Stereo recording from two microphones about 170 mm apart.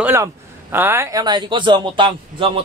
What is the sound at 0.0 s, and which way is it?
Speech, 15° right (ahead or behind).